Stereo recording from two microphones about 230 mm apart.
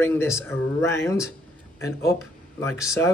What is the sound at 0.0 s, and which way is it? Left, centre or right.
Speech, centre.